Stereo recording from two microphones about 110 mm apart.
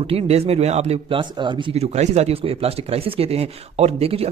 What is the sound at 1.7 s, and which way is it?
Speech, 80° right.